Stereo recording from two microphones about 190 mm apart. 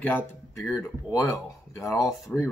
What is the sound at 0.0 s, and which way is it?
Speech, 10° left (ahead or behind).